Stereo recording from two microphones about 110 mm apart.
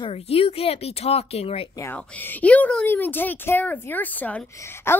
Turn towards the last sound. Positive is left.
turn(degrees=20)  # may be behind; listen again after turning